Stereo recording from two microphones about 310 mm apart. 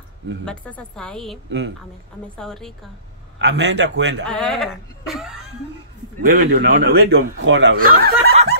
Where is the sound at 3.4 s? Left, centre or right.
Right.